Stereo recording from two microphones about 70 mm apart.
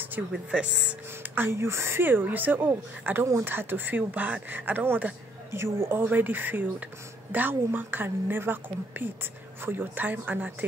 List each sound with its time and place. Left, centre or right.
0.3 s speech: centre
1.3 s a woman's voice: right
5.5 s a woman's voice: right